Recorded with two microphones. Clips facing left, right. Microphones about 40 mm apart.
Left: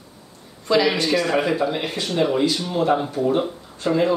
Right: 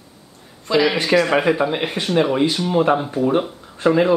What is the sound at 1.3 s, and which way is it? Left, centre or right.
Speech, right.